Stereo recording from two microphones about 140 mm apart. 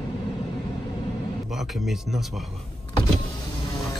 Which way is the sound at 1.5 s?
Centre (ahead or behind).